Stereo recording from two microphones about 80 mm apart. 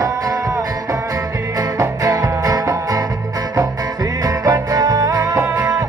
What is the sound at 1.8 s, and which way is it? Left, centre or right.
Music, right.